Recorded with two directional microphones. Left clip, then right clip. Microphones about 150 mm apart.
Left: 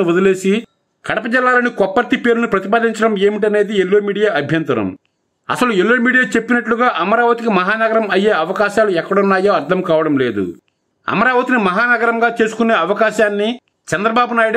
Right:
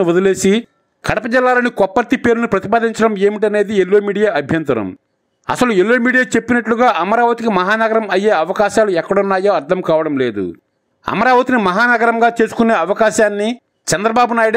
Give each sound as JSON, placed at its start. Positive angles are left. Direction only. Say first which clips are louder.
{"t": 0.0, "sound": "a man's voice", "louder": "right 1 dB", "side_deg": -40}